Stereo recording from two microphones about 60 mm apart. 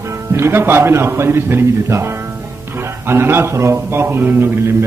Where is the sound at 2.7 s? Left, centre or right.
Right.